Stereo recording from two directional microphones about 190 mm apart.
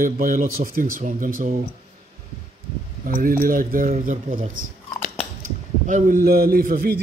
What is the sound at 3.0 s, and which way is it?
A man's voice, 50° right (ahead or behind).